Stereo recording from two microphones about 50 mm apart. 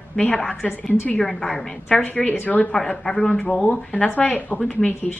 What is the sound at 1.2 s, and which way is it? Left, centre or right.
Speech, centre.